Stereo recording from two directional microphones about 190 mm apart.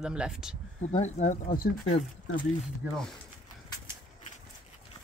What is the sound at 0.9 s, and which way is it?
Speech, 40° left (ahead or behind).